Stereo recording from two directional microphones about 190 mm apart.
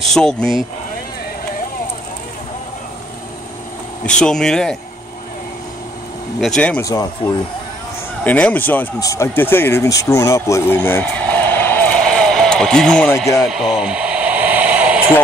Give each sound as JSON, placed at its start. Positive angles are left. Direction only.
{"t": 0.1, "sound": "speech", "side_deg": 5}
{"t": 4.0, "sound": "speech", "side_deg": 5}
{"t": 6.4, "sound": "speech", "side_deg": 5}
{"t": 6.8, "sound": "speech", "side_deg": 20}
{"t": 8.2, "sound": "speech", "side_deg": 10}
{"t": 13.5, "sound": "a sound", "side_deg": 0}